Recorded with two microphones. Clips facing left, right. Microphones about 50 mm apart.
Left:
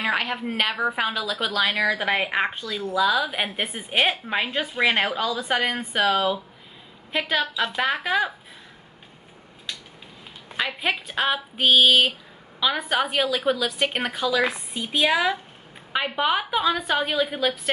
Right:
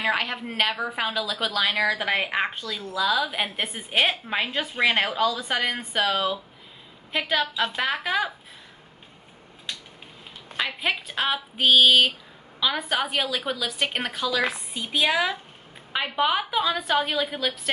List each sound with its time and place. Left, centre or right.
0.0 s a woman's voice: centre
10.6 s a woman's voice: centre